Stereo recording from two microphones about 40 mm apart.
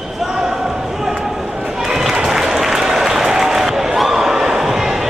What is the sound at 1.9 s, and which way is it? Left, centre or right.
Applause, centre.